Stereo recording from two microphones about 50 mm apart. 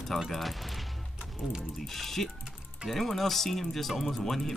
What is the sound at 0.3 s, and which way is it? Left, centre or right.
Speech, centre.